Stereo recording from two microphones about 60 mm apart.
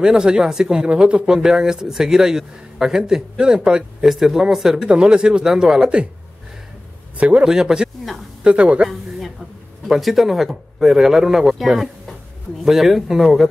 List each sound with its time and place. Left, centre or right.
0.0 s speech: centre
5.8 s speech: centre
7.2 s a man's voice: right
7.4 s speech: centre
9.8 s a man's voice: centre